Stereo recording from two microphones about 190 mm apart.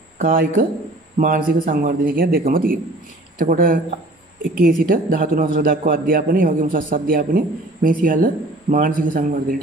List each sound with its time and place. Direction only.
0.2 s a man's voice: 45° right (ahead or behind)